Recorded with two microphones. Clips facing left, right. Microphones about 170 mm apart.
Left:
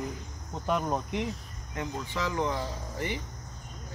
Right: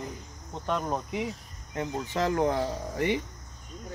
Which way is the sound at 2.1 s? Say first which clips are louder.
Right 5 dB; 50° right (ahead or behind).